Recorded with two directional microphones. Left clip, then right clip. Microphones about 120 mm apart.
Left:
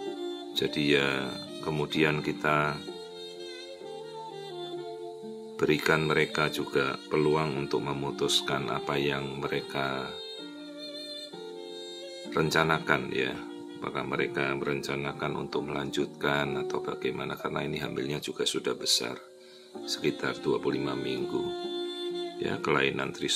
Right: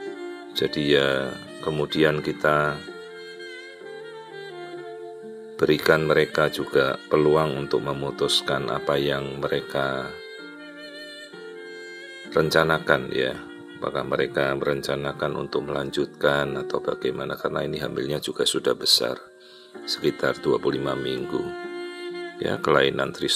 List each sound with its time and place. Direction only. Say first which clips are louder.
0.6 s speech: right 5 dB; 35° right (ahead or behind)
1.6 s speech: right 6 dB; 20° right (ahead or behind)
1.9 s speech: right 6 dB; 35° right (ahead or behind)
5.6 s speech: right 6 dB; 35° right (ahead or behind)
12.4 s speech: right 6 dB; 35° right (ahead or behind)
22.4 s speech: right 8 dB; 45° right (ahead or behind)